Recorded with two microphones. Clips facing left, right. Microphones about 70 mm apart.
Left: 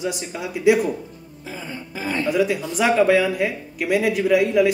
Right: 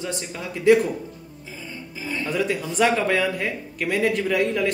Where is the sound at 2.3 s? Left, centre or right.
Centre.